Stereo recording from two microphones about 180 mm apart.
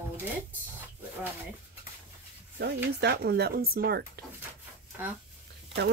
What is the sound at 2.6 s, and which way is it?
Speech, 65° right (ahead or behind).